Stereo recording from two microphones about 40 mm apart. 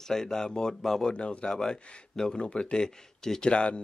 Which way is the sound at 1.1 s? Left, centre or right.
Left.